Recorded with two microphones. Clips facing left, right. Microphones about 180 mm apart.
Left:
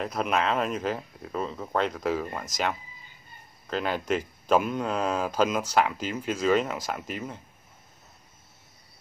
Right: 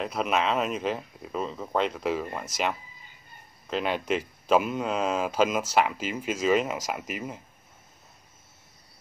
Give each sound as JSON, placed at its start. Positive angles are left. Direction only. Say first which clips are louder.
{"t": 0.0, "sound": "speech", "louder": "even", "side_deg": 0}